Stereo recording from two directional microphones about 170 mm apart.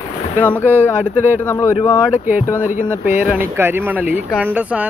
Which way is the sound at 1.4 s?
15° left (ahead or behind).